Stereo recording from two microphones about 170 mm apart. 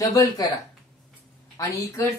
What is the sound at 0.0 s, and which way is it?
Speech, 20° left (ahead or behind).